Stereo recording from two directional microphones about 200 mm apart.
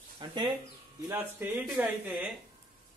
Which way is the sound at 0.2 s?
25° right (ahead or behind).